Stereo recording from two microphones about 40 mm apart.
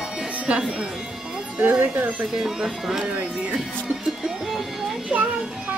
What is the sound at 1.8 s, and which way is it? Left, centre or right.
Speech, right.